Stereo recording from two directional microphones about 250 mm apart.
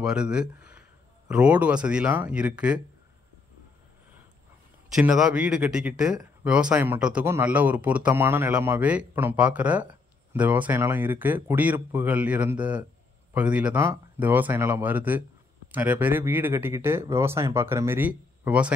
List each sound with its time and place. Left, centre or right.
0.0 s speech: centre
4.9 s speech: centre